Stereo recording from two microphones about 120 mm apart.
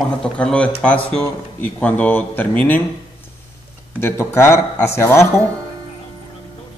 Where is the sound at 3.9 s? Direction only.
20° left (ahead or behind).